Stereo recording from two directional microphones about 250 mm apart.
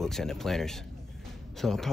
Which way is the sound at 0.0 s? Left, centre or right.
Centre.